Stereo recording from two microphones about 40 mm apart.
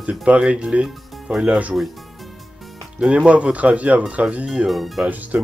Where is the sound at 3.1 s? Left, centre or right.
Right.